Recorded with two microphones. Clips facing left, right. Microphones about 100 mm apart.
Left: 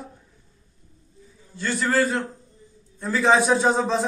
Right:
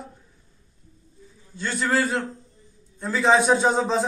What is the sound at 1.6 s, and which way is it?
A man's voice, 10° right (ahead or behind).